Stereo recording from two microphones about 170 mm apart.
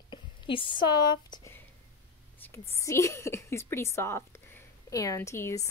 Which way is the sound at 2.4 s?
15° left (ahead or behind).